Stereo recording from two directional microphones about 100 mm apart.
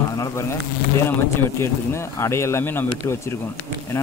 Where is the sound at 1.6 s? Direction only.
25° left (ahead or behind).